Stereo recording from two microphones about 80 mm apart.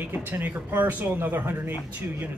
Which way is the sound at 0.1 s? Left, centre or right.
Right.